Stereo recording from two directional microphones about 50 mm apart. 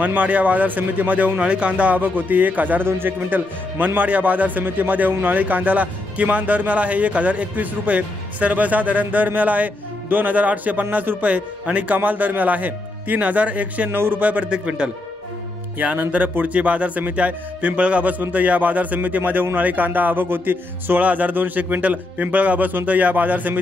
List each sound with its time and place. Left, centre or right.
0.0 s a man's voice: right
1.4 s a man's voice: right
2.8 s a man's voice: right
13.8 s speech: right
14.2 s speech: right
16.1 s a man's voice: right